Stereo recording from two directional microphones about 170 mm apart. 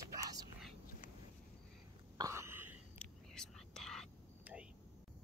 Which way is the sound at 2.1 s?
20° right (ahead or behind).